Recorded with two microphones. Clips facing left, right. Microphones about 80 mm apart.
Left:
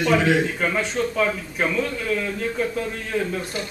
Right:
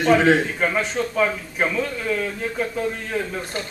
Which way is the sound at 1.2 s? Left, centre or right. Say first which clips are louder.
Right 1 dB; centre.